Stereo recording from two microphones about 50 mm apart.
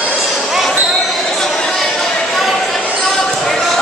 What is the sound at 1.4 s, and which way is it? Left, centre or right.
Chatter, centre.